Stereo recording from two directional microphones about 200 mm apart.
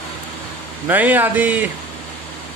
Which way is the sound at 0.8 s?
10° right (ahead or behind).